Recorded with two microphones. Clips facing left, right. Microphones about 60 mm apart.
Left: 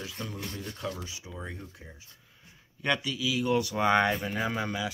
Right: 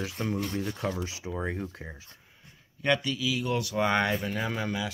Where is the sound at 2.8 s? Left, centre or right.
Centre.